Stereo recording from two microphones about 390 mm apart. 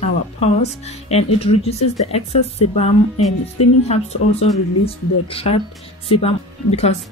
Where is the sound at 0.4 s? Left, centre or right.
Centre.